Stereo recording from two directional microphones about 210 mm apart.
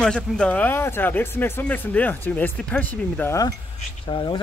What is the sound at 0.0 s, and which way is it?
Speech, 5° left (ahead or behind).